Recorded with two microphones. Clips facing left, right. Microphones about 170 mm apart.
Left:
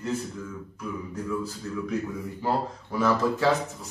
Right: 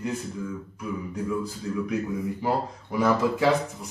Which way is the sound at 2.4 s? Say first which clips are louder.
Left 3 dB; 15° right (ahead or behind).